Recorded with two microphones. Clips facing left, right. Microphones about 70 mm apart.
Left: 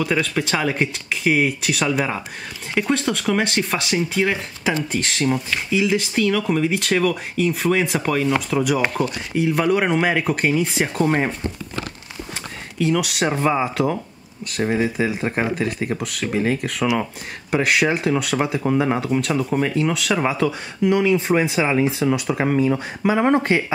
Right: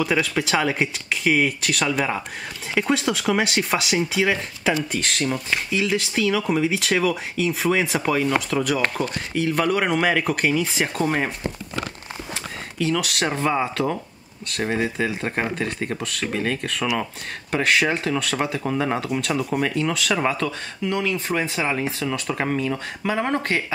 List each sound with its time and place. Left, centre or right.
0.0 s speech: centre
12.7 s speech: centre
22.7 s speech: centre